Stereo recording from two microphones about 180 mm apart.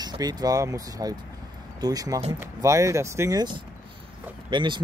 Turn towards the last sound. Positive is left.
turn(degrees=-25)  # may be behind; listen again after turning